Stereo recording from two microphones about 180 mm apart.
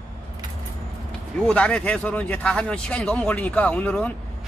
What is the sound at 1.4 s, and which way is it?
A man's voice, 5° left (ahead or behind).